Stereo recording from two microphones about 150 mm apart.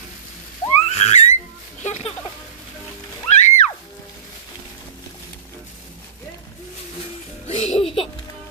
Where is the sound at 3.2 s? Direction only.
45° left (ahead or behind).